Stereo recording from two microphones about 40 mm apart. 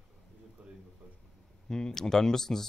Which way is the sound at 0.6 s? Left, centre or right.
Right.